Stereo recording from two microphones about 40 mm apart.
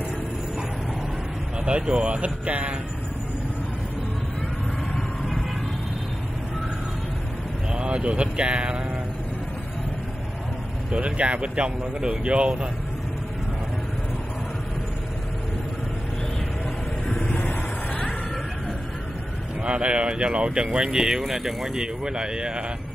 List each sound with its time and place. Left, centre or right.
1.7 s speech: right
7.7 s speech: right
10.9 s speech: right
17.4 s vehicle: left
19.6 s speech: right; by 21.8 s centre
22.0 s speech: right